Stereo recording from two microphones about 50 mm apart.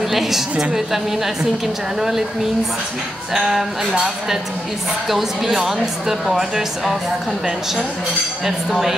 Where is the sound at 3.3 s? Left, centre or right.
Centre.